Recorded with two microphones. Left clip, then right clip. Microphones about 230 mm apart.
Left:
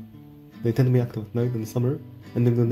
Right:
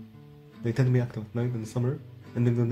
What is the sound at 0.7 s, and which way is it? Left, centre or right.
Speech, centre.